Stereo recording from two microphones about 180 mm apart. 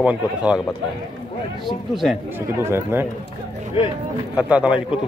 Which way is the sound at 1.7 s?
Centre (ahead or behind).